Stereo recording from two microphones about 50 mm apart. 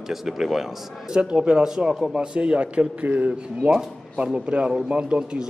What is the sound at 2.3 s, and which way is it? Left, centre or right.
A man's voice, right.